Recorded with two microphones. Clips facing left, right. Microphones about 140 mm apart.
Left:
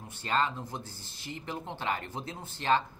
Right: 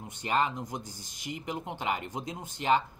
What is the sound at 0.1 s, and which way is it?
Speech, 15° right (ahead or behind).